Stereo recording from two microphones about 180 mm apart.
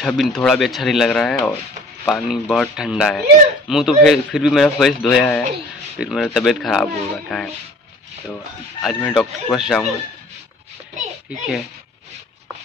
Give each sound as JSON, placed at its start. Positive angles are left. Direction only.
{"t": 0.0, "sound": "speech", "side_deg": 5}
{"t": 8.8, "sound": "speech", "side_deg": 0}